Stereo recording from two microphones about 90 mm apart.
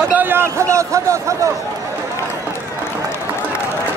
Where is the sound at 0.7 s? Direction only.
35° right (ahead or behind).